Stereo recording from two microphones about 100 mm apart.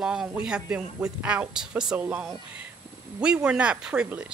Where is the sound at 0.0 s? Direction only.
5° right (ahead or behind).